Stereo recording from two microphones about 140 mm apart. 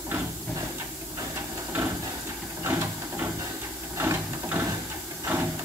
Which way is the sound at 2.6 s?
15° right (ahead or behind).